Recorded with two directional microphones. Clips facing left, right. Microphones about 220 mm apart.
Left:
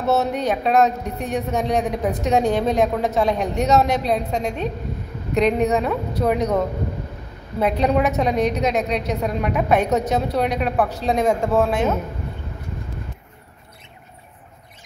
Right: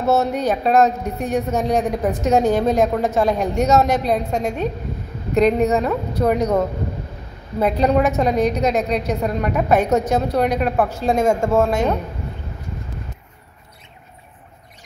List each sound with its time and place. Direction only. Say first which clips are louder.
0.1 s speech: right 2 dB; centre (ahead or behind)
7.6 s speech: right 2 dB; centre (ahead or behind)